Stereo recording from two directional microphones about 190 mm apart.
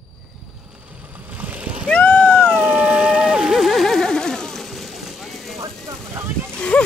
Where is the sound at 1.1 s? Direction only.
10° right (ahead or behind).